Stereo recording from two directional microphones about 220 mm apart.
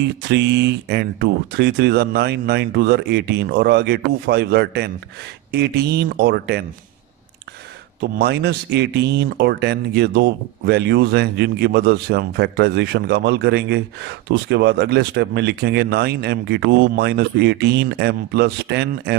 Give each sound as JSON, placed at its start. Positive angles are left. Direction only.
{"t": 0.0, "sound": "speech", "side_deg": -50}
{"t": 8.0, "sound": "speech", "side_deg": -50}